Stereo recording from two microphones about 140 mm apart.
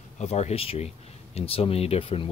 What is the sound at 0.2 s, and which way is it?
Speech, 50° left (ahead or behind).